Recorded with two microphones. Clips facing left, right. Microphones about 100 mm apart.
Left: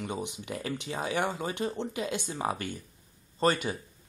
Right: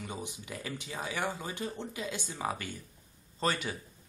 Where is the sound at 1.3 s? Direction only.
60° left (ahead or behind).